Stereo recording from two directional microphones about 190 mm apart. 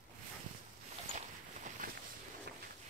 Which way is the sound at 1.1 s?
40° right (ahead or behind).